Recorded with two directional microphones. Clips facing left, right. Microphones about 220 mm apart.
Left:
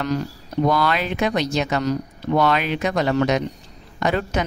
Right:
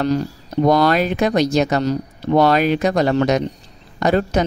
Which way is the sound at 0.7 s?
40° right (ahead or behind).